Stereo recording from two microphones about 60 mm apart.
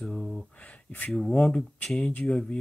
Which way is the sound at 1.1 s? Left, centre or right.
Centre.